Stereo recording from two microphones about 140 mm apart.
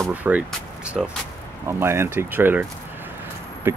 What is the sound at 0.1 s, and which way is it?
Speech, 10° right (ahead or behind).